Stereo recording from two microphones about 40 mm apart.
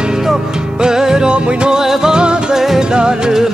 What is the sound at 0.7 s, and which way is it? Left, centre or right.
Music, centre.